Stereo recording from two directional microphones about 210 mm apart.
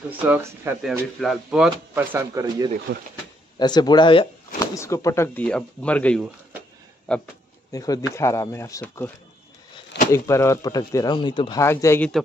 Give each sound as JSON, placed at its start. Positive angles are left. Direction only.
{"t": 0.2, "sound": "speech", "side_deg": -10}
{"t": 3.5, "sound": "speech", "side_deg": 20}
{"t": 7.7, "sound": "speech", "side_deg": 15}
{"t": 10.1, "sound": "speech", "side_deg": 15}